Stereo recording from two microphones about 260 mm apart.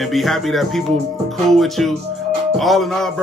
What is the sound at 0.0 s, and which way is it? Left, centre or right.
Speech, centre.